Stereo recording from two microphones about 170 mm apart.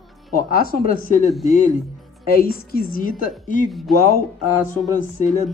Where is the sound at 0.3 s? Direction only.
60° left (ahead or behind).